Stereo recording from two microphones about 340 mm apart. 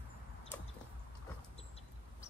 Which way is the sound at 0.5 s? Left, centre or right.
Centre.